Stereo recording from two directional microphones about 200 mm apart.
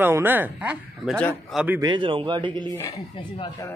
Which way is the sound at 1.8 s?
25° right (ahead or behind).